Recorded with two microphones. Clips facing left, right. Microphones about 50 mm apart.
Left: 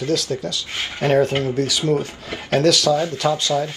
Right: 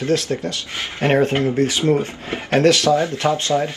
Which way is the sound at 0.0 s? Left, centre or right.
Right.